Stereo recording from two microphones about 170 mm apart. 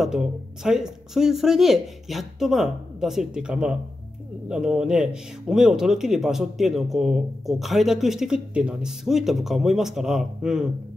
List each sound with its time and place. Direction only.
0.0 s a man's voice: 5° right (ahead or behind)